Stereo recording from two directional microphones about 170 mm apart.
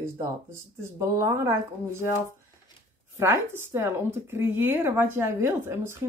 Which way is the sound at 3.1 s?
15° right (ahead or behind).